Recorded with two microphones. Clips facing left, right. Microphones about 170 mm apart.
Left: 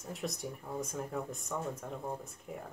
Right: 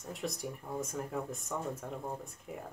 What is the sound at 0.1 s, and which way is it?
Speech, centre (ahead or behind).